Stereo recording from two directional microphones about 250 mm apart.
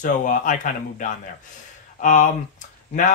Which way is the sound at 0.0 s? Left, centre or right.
Left.